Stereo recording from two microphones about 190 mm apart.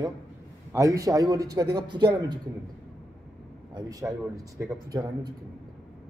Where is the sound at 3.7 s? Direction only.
20° right (ahead or behind).